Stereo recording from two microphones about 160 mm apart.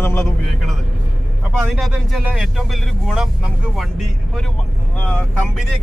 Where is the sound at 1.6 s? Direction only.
Centre (ahead or behind).